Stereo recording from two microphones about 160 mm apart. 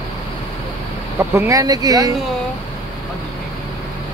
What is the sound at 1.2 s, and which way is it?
Speech, 15° right (ahead or behind).